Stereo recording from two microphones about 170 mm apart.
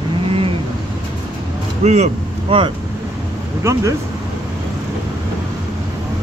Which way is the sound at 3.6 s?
20° right (ahead or behind).